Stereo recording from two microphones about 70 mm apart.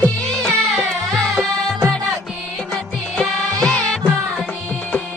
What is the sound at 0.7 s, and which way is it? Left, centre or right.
Music, centre.